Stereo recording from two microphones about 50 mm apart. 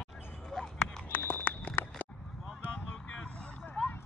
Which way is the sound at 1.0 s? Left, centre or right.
Left.